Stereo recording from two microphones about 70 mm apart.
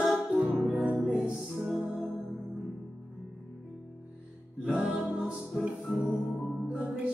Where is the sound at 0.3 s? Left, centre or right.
Right; by 2.0 s centre.